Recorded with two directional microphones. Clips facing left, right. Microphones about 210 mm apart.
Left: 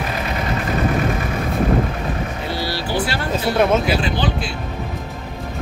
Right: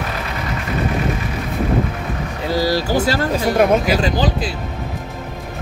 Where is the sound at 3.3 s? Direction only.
15° right (ahead or behind).